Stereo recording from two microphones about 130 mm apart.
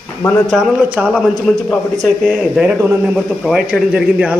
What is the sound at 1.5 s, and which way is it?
A man's voice, centre (ahead or behind).